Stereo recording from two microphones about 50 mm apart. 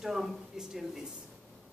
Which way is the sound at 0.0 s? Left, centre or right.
Centre.